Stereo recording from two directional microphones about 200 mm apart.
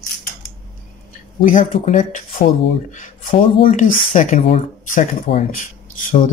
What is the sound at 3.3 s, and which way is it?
Speech, 25° left (ahead or behind).